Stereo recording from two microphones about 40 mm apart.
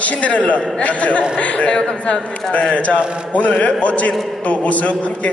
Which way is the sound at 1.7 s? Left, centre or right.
Left.